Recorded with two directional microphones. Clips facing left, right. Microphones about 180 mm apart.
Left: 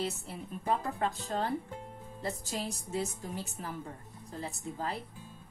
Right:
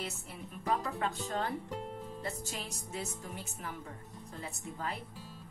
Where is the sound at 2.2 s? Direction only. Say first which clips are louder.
Left 7 dB; 35° left (ahead or behind).